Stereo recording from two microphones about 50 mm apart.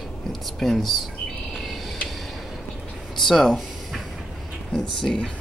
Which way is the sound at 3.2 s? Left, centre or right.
Centre.